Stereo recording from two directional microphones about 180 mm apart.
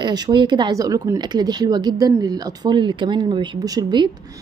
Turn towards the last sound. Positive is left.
turn(degrees=-25)  # may be behind; listen again after turning